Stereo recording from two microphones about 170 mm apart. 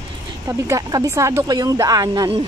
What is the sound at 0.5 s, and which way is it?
Speech, 20° right (ahead or behind).